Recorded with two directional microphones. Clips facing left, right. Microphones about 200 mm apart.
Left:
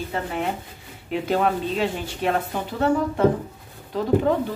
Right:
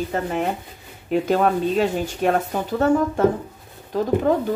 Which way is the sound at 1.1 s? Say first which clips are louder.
Right 3 dB; 45° right (ahead or behind).